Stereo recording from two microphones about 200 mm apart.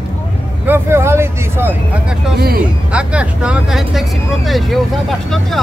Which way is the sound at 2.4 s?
50° right (ahead or behind).